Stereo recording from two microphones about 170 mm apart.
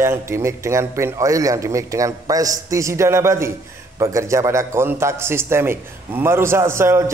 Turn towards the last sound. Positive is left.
turn(degrees=-15)  # may be behind; listen again after turning